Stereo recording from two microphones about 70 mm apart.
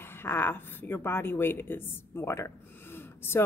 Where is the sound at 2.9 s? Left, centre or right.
Left.